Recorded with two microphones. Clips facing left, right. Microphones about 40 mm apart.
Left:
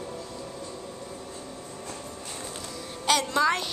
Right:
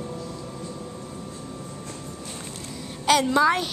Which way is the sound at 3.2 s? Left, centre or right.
Centre.